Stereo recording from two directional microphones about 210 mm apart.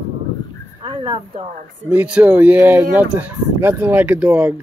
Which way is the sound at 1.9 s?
5° right (ahead or behind).